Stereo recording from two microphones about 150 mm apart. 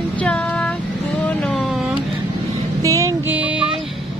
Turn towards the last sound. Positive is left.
turn(degrees=-10)  # may be behind; listen again after turning